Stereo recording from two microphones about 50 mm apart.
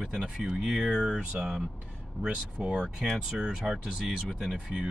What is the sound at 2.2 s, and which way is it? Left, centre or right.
Speech, centre.